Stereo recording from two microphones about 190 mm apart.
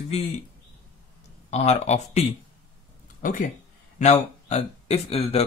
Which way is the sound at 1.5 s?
35° left (ahead or behind).